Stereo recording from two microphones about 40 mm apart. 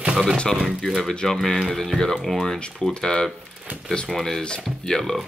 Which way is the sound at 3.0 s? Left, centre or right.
Centre.